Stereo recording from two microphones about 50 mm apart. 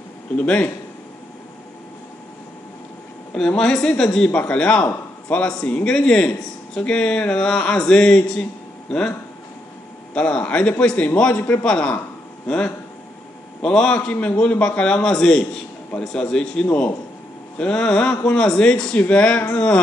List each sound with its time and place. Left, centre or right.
0.4 s a man's voice: left
3.3 s speech: centre
4.3 s a man's voice: left
5.9 s speech: centre
10.1 s a man's voice: left
13.6 s a man's voice: centre